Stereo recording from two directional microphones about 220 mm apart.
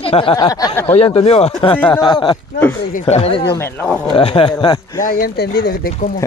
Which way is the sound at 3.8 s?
Centre (ahead or behind).